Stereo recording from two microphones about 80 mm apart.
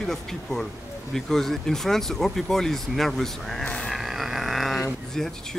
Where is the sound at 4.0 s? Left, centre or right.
Centre.